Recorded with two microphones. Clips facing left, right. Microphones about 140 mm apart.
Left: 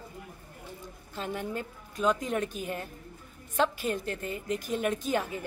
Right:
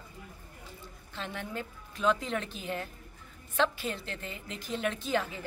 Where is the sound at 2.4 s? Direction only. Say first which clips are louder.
Left 4 dB; 50° left (ahead or behind).